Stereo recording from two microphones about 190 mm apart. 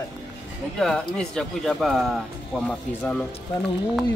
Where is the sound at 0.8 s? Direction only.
5° left (ahead or behind).